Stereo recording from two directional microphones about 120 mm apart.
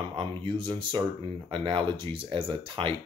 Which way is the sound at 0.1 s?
40° right (ahead or behind).